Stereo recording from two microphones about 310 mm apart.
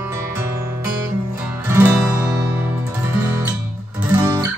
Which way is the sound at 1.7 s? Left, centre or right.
Centre.